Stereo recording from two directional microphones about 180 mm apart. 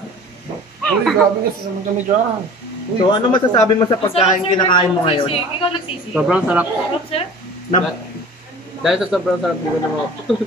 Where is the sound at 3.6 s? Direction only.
30° left (ahead or behind).